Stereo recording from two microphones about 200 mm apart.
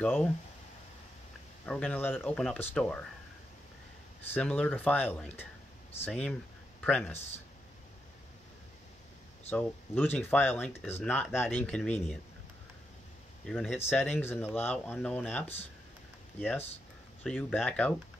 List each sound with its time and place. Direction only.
0.0 s speech: 5° left (ahead or behind)
1.7 s speech: 5° left (ahead or behind)
4.3 s speech: 5° left (ahead or behind)
9.5 s speech: 10° left (ahead or behind)
13.5 s speech: 5° left (ahead or behind)